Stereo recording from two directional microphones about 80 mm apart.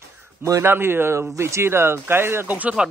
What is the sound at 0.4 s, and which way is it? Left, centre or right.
Speech, right.